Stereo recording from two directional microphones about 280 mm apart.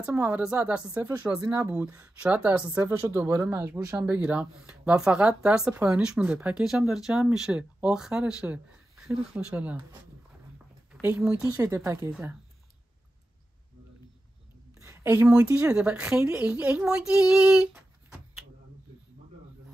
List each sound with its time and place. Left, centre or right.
0.0 s speech: centre
10.9 s speech: centre
14.8 s a woman's voice: centre